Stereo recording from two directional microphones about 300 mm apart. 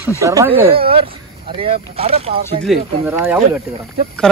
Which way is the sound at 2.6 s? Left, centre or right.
Centre.